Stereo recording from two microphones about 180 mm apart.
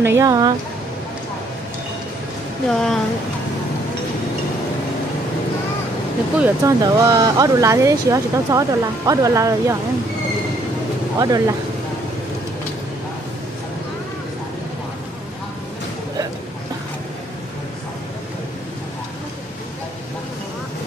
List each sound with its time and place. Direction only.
0.0 s speech: 15° right (ahead or behind)
2.7 s speech: centre (ahead or behind)
6.4 s speech: 20° right (ahead or behind)
11.1 s speech: 20° right (ahead or behind)